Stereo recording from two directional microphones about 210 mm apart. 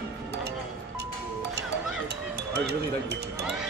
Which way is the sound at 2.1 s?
55° right (ahead or behind).